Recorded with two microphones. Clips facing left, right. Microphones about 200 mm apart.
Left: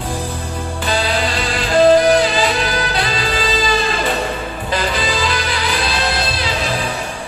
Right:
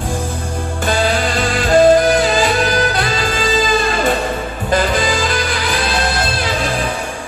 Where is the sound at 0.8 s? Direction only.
50° right (ahead or behind).